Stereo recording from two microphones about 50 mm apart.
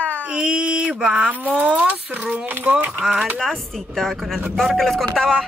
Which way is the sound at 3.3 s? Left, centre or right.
Centre.